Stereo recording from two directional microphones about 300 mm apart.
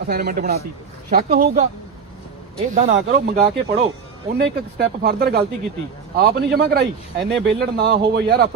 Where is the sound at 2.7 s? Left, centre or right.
Right.